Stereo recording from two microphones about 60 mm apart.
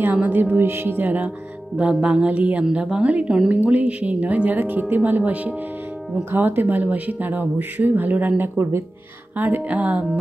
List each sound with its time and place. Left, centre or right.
0.0 s speech: right
1.8 s a woman's voice: centre; by 8.8 s right
9.4 s a woman's voice: right